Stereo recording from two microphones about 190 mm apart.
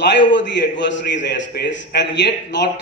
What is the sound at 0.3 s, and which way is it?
A man's voice, 70° left (ahead or behind).